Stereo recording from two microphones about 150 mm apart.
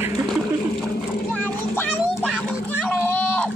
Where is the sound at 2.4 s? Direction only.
5° left (ahead or behind).